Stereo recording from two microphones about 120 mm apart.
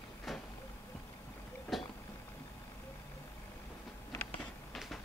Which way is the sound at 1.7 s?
Centre (ahead or behind).